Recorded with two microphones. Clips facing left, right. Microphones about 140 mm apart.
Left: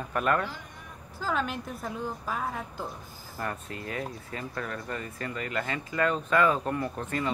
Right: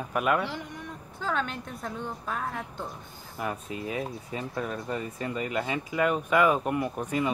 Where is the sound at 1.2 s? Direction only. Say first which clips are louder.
Even; 5° left (ahead or behind).